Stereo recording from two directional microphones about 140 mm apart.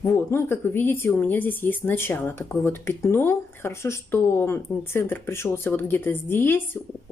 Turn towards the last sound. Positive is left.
turn(degrees=15)  # may be behind; listen again after turning